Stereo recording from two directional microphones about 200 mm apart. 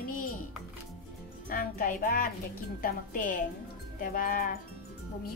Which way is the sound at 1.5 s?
45° left (ahead or behind).